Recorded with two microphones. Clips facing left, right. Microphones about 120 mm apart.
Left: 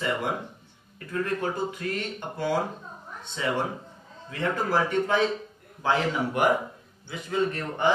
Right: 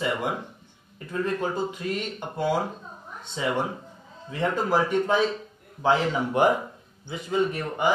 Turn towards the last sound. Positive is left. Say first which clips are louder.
# right 1 dB
turn(degrees=-10)  # may be behind; listen again after turning